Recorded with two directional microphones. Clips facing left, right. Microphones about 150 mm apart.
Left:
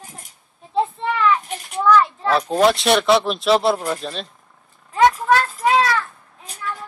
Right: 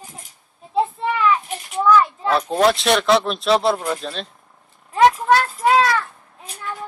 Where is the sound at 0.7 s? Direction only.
5° right (ahead or behind).